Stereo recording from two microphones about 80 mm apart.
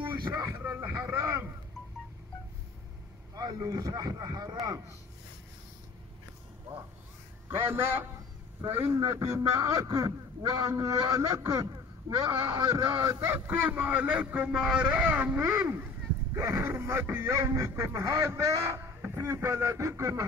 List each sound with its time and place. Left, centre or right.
0.1 s speech: right
0.6 s boat: right
3.3 s speech: right
7.4 s a man's voice: right
13.2 s a man's voice: right
16.3 s speech: right
18.9 s speech: right